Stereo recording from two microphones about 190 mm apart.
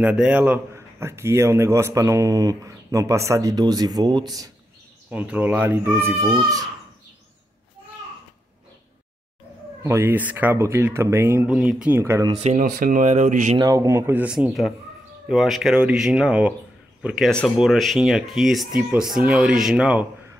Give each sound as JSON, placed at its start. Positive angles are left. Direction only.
{"t": 0.0, "sound": "a man's voice", "side_deg": -5}
{"t": 5.1, "sound": "a man's voice", "side_deg": -5}
{"t": 9.8, "sound": "a man's voice", "side_deg": -10}
{"t": 12.3, "sound": "speech", "side_deg": -35}
{"t": 13.6, "sound": "a man's voice", "side_deg": -15}